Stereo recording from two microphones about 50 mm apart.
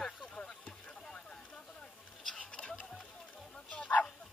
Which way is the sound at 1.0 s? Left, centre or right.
Centre.